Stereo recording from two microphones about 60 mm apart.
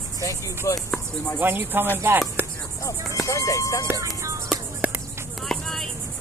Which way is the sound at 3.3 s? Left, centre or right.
Left.